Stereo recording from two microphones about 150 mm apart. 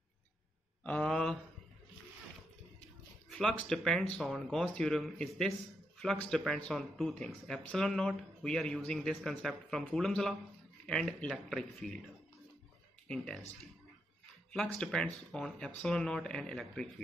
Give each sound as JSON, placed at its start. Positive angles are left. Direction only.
{"t": 0.8, "sound": "a sound", "side_deg": 5}
{"t": 3.3, "sound": "speech", "side_deg": 5}
{"t": 14.8, "sound": "speech", "side_deg": 5}